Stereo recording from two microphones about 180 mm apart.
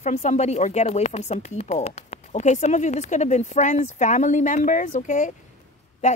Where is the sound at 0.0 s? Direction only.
40° left (ahead or behind).